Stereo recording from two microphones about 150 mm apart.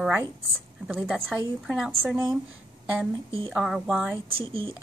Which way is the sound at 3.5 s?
5° right (ahead or behind).